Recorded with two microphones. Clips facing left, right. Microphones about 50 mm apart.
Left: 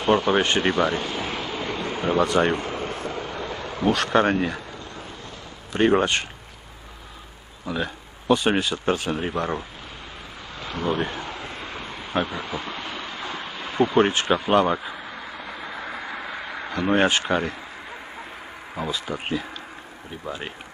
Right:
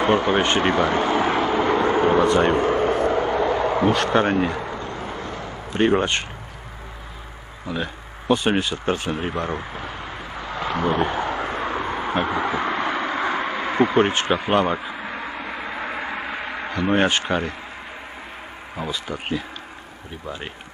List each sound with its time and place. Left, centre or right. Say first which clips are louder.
0.0 s a sound: right 1 dB; right
7.7 s speech: even; right
10.8 s speech: right 3 dB; right
11.1 s vehicle: right 9 dB; right
14.4 s speech: left 1 dB; right
15.0 s a sound: right 5 dB; right
15.7 s vehicle: right 5 dB; right
16.3 s a sound: right 3 dB; right
16.8 s speech: even; right
18.9 s speech: even; right